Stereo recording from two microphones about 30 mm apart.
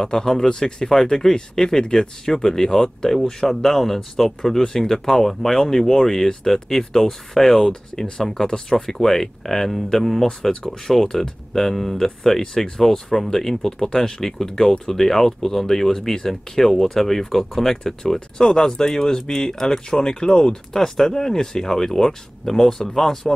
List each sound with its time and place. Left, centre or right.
0.0 s speech: centre
10.5 s speech: left
11.0 s speech: centre
12.5 s speech: left
12.8 s speech: centre
18.4 s speech: left
20.7 s speech: centre